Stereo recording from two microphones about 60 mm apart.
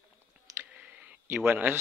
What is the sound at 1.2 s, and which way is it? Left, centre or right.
Speech, right.